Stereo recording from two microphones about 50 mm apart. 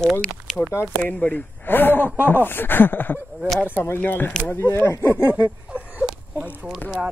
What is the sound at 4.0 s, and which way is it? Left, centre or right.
Speech, left.